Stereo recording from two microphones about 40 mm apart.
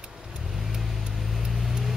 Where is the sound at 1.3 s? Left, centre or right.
Centre.